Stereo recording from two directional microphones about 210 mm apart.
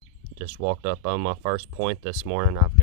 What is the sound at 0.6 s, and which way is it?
Speech, 30° right (ahead or behind).